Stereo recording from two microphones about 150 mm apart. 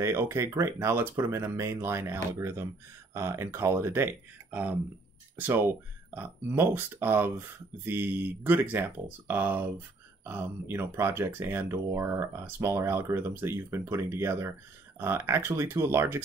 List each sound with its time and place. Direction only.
0.0 s speech: 15° right (ahead or behind)